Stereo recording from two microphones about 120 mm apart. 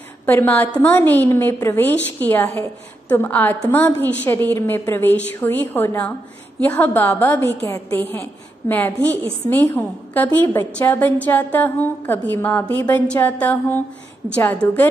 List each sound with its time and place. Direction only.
0.3 s a woman's voice: 15° left (ahead or behind)